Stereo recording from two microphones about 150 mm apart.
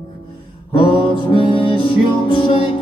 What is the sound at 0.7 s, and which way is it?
Music, 35° left (ahead or behind).